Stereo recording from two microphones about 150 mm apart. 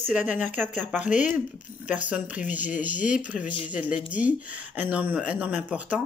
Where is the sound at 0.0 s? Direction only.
10° right (ahead or behind).